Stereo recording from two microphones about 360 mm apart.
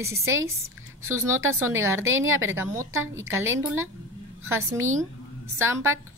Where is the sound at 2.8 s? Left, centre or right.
Right.